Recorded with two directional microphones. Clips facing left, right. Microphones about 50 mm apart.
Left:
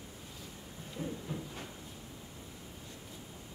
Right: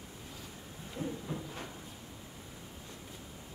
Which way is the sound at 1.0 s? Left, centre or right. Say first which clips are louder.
Right 1 dB; centre.